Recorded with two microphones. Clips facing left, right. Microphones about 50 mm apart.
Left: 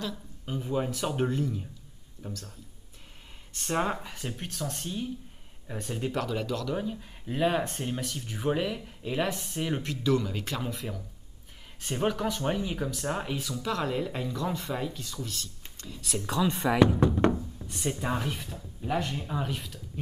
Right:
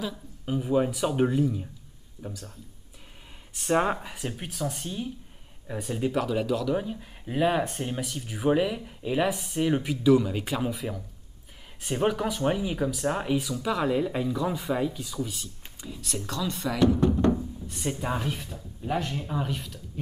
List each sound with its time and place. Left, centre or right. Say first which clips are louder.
0.0 s speech: right 2 dB; centre
3.5 s speech: right 5 dB; centre
16.0 s speech: left 1 dB; centre
16.3 s speech: left 4 dB; left
17.6 s speech: even; centre